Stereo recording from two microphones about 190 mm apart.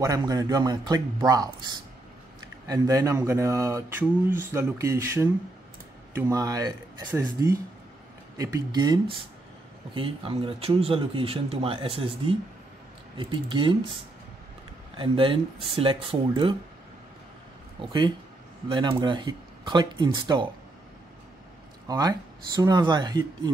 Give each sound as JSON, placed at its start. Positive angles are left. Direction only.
{"t": 0.0, "sound": "speech", "side_deg": -20}
{"t": 15.0, "sound": "speech", "side_deg": -25}
{"t": 18.7, "sound": "speech", "side_deg": -25}
{"t": 21.8, "sound": "speech", "side_deg": -20}